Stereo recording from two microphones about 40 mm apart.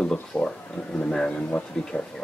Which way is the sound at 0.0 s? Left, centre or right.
Centre.